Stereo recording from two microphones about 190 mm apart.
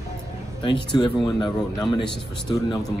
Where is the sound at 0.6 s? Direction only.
25° left (ahead or behind).